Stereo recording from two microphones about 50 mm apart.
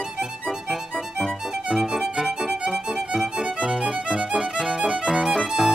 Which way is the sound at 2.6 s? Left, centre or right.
Centre.